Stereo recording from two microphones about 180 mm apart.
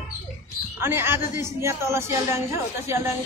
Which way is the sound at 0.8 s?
15° right (ahead or behind).